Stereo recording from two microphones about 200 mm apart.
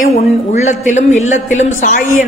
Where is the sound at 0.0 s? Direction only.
35° left (ahead or behind).